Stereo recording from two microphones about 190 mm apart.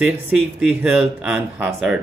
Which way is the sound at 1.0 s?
5° right (ahead or behind).